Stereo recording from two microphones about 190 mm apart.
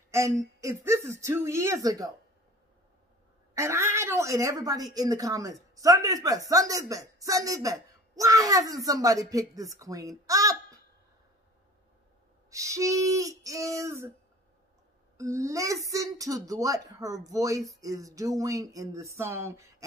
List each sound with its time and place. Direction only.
0.1 s a woman's voice: 15° right (ahead or behind)
3.5 s a woman's voice: 15° right (ahead or behind)
12.4 s a woman's voice: 15° right (ahead or behind)
15.1 s a woman's voice: 15° right (ahead or behind)